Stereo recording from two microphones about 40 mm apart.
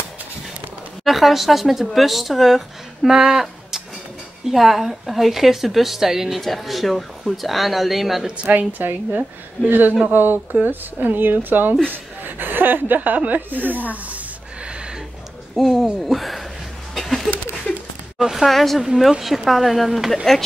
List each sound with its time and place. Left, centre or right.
1.0 s speech: centre
6.3 s speech: centre
8.5 s speech: right
11.9 s a sound: right
15.5 s speech: centre
16.9 s a sound: centre
18.2 s a woman's voice: centre